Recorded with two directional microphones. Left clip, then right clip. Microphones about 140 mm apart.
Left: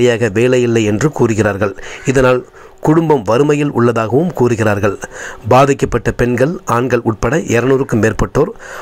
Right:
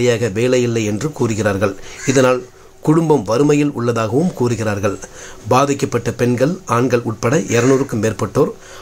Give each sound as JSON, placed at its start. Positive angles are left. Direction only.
{"t": 0.0, "sound": "speech", "side_deg": 45}